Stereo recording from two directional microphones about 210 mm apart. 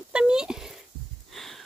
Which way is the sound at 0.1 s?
5° right (ahead or behind).